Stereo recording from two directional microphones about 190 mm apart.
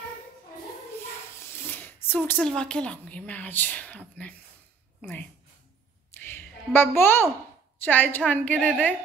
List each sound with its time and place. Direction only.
1.7 s speech: 10° left (ahead or behind)
6.2 s a sound: 10° left (ahead or behind)
7.8 s a woman's voice: 10° left (ahead or behind)